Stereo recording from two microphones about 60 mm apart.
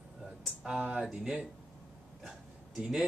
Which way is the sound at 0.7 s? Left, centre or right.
Centre.